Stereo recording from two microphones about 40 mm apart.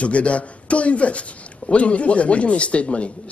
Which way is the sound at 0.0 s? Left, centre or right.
Left.